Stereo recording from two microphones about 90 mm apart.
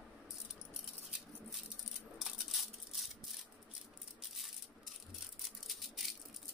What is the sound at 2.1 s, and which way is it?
Coin, 5° right (ahead or behind).